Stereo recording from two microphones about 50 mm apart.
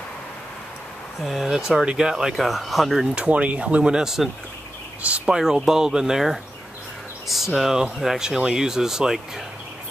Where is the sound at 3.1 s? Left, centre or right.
Right; by 6.4 s centre.